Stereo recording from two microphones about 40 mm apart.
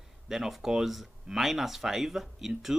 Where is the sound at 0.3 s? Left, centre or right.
Centre.